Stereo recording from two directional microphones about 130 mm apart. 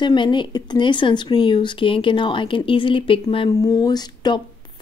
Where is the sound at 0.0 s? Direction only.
35° left (ahead or behind).